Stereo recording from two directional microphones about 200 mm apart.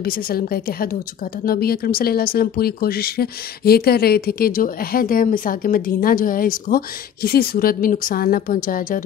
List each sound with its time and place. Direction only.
0.0 s speech: 50° left (ahead or behind)